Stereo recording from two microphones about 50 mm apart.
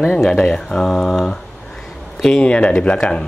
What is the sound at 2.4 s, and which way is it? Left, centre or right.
Speech, left.